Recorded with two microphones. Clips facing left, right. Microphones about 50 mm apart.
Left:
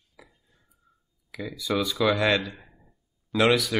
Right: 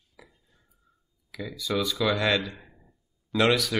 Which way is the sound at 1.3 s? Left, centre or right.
Centre.